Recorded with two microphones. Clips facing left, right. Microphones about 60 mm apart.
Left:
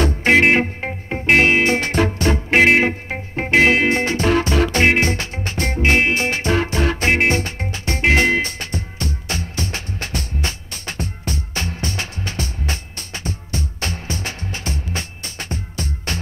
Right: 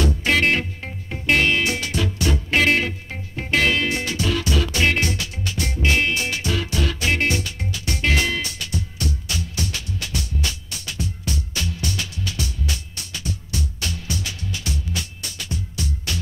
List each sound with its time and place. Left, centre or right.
0.3 s music: left